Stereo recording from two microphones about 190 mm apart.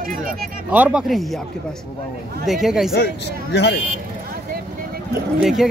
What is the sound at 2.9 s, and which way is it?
Speech, 60° left (ahead or behind).